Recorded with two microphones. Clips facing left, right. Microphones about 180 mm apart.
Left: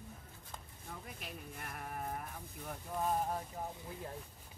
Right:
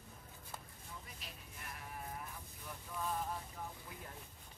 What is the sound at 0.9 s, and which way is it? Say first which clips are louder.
Sheep: left 7 dB; 55° left (ahead or behind).